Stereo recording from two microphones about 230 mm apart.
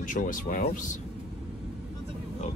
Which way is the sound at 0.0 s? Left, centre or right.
Left.